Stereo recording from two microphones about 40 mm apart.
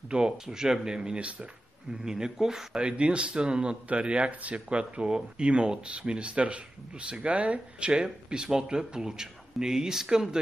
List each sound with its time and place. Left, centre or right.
0.1 s speech: centre
2.8 s speech: right
4.6 s speech: right